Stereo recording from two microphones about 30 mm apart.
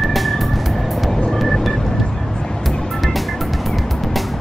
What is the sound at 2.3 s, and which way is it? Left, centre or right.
Music, left.